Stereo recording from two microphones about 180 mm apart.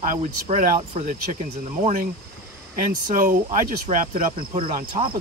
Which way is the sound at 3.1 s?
50° right (ahead or behind).